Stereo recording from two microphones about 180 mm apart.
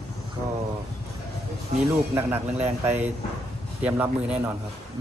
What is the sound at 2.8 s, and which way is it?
A man's voice, 15° right (ahead or behind).